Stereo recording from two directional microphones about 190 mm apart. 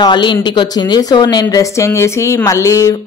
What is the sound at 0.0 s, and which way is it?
Speech, 25° left (ahead or behind).